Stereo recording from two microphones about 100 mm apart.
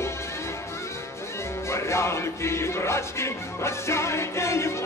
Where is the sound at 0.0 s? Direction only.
25° left (ahead or behind).